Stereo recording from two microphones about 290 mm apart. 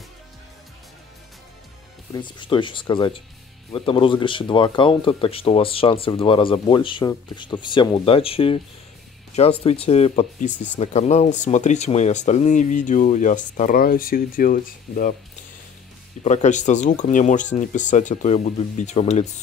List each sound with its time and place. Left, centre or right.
2.1 s speech: centre
16.3 s speech: left